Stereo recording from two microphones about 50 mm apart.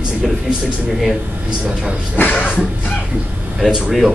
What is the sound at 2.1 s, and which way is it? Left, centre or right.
Speech, left.